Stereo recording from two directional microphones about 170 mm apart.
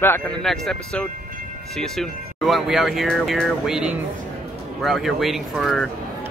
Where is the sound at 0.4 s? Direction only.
5° left (ahead or behind).